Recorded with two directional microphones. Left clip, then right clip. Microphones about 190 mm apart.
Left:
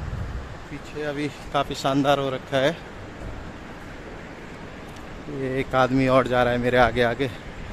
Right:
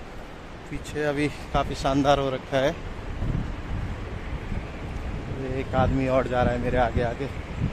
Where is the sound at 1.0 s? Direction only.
55° right (ahead or behind).